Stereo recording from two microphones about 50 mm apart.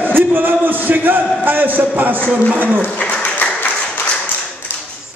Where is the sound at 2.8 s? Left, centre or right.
Left.